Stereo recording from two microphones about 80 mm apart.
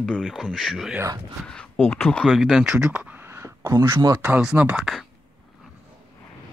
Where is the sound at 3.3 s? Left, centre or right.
Right.